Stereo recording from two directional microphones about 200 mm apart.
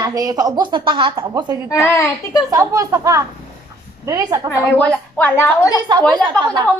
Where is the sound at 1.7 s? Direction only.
15° left (ahead or behind).